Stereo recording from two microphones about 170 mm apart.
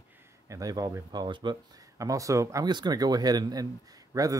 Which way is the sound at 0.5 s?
20° right (ahead or behind).